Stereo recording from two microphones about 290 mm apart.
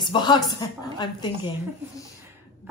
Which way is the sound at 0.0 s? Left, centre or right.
Centre.